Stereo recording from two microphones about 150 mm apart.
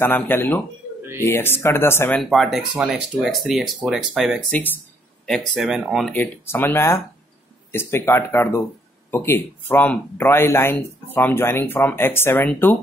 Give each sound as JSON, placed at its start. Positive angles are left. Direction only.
{"t": 0.0, "sound": "speech", "side_deg": 15}
{"t": 2.2, "sound": "speech", "side_deg": 0}
{"t": 4.5, "sound": "speech", "side_deg": 10}
{"t": 5.2, "sound": "speech", "side_deg": 0}
{"t": 6.1, "sound": "speech", "side_deg": 10}